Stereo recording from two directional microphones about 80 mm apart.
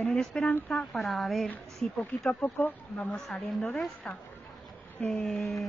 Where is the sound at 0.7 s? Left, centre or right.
Centre.